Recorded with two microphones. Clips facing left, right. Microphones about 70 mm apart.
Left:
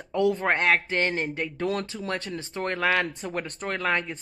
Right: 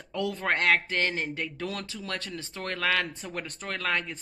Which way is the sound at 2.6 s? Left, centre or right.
Centre.